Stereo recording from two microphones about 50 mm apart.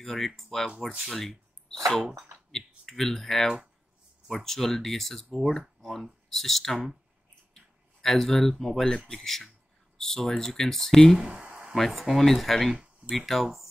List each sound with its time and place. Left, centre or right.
0.0 s speech: centre
5.8 s a sound: centre
6.2 s speech: centre
11.1 s speech: right
11.7 s speech: centre